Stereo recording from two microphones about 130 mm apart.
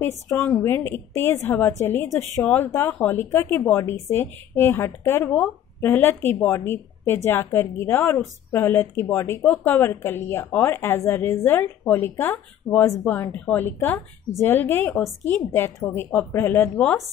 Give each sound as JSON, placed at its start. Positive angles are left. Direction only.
{"t": 0.3, "sound": "speech", "side_deg": 15}